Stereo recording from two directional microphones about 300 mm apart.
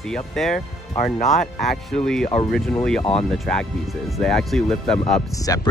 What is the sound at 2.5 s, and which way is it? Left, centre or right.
Speech, centre.